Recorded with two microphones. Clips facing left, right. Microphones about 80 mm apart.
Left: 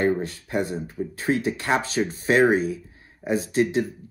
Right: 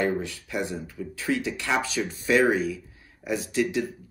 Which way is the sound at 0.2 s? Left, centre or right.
Left.